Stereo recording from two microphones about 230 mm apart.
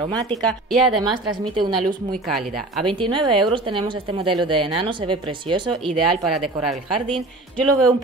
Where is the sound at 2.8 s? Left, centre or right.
Right.